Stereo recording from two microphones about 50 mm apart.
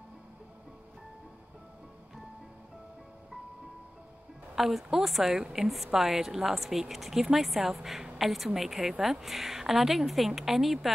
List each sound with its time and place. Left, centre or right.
4.6 s a woman's voice: centre